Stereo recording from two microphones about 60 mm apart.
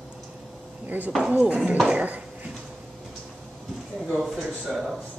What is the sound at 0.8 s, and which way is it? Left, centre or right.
Speech, right.